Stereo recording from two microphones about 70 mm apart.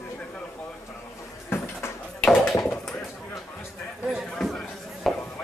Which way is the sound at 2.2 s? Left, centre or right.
Centre.